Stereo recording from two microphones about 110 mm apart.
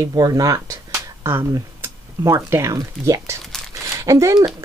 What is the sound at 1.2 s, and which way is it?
Speech, 20° right (ahead or behind).